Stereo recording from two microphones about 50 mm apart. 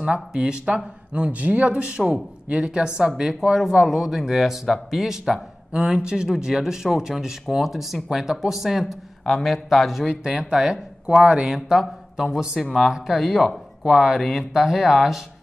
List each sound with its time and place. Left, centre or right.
0.1 s speech: centre
10.0 s speech: centre
11.4 s speech: centre